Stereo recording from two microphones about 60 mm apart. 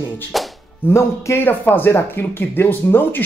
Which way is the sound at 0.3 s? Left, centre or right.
Centre.